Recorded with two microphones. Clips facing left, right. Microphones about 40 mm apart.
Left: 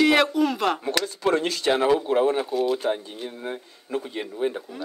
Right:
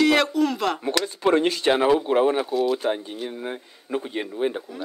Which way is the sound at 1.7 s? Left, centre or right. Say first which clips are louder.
Even; centre.